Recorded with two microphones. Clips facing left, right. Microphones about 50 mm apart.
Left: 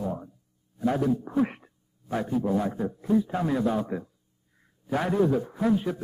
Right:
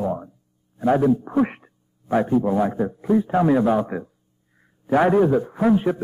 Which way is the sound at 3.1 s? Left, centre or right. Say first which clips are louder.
Right 7 dB; right.